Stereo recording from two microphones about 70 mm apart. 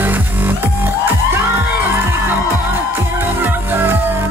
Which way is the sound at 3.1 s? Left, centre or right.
Right.